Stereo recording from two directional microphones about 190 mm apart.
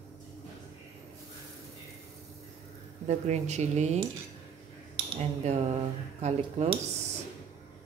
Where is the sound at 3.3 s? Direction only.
35° right (ahead or behind).